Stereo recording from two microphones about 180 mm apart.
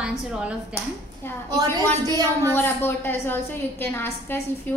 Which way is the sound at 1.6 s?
20° right (ahead or behind).